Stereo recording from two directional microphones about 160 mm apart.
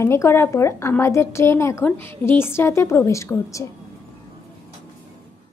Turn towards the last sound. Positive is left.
turn(degrees=20)  # may be behind; listen again after turning